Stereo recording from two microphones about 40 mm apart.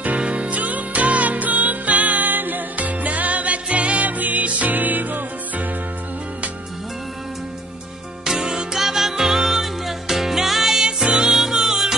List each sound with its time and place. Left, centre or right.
0.0 s music: right
8.3 s music: centre